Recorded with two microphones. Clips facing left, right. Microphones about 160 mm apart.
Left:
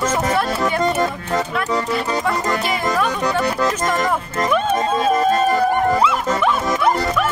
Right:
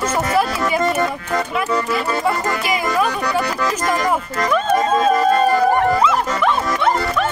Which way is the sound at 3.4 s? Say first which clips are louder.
Left 2 dB; 20° left (ahead or behind).